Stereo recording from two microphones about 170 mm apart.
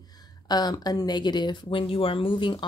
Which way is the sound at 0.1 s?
25° left (ahead or behind).